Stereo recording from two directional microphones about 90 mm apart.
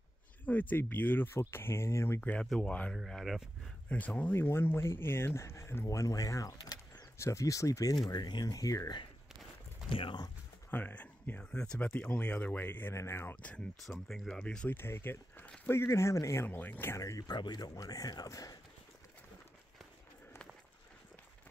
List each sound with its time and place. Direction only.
0.5 s speech: 20° left (ahead or behind)
2.9 s speech: 5° left (ahead or behind)
3.9 s speech: 15° left (ahead or behind); by 7.1 s 50° left (ahead or behind)
7.2 s speech: 35° left (ahead or behind)
8.1 s speech: 50° left (ahead or behind)
9.8 s speech: 90° left
10.7 s speech: 20° left (ahead or behind)
14.0 s speech: 5° left (ahead or behind)
14.7 s speech: 25° left (ahead or behind)
16.4 s speech: 20° left (ahead or behind)
17.0 s speech: 35° left (ahead or behind)
17.3 s speech: 50° left (ahead or behind)